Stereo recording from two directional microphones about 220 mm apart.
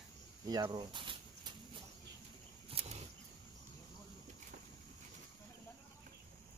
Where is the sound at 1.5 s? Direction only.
20° right (ahead or behind).